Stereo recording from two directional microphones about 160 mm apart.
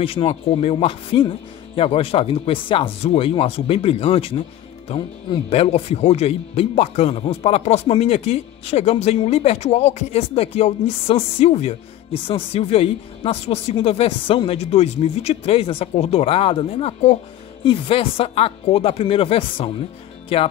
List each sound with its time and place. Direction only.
0.0 s speech: 35° left (ahead or behind)